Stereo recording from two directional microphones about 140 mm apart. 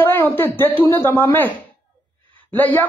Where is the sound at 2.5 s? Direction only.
15° left (ahead or behind).